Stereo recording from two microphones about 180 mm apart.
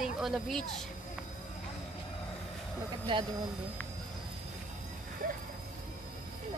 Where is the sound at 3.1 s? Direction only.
30° right (ahead or behind).